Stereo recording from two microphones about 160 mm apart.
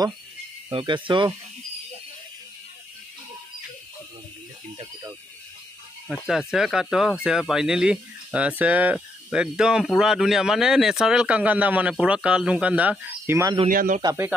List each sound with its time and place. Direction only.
0.7 s speech: 30° right (ahead or behind)
6.0 s speech: centre (ahead or behind)
13.7 s speech: 55° right (ahead or behind)
14.0 s speech: 15° right (ahead or behind)